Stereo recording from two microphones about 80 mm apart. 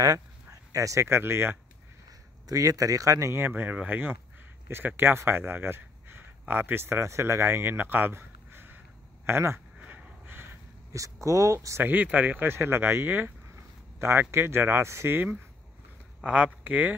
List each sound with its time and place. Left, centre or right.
0.0 s speech: right
2.4 s speech: right
3.4 s speech: right
9.8 s a sound: centre
11.0 s speech: right
11.8 s speech: right
16.2 s speech: centre